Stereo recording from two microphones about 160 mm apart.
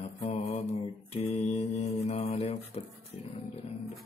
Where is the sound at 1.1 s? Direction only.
40° left (ahead or behind).